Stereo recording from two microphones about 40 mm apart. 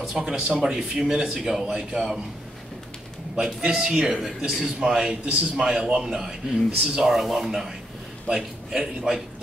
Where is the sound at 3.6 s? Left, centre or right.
Centre.